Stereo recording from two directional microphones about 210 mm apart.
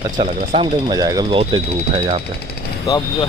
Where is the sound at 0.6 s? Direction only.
25° right (ahead or behind).